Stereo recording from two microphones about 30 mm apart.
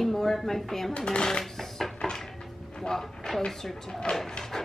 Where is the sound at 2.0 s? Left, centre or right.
Left.